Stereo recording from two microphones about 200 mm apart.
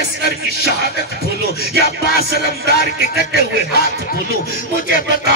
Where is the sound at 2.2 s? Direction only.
55° right (ahead or behind).